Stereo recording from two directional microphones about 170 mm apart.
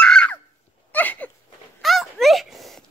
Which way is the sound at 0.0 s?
5° left (ahead or behind).